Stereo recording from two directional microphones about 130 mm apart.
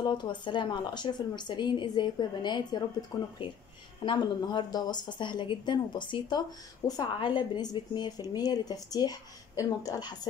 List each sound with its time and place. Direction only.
0.0 s a woman's voice: 35° left (ahead or behind)
4.0 s a woman's voice: 35° left (ahead or behind)